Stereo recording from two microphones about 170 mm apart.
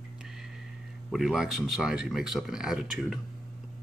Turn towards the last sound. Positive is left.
turn(degrees=-5)  # may be behind; listen again after turning